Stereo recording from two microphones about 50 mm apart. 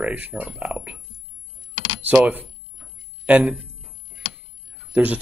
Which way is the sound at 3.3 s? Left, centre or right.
Right.